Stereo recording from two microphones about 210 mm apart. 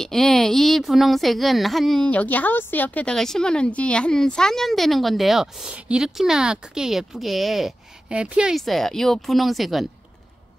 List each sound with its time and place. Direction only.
0.0 s a woman's voice: centre (ahead or behind)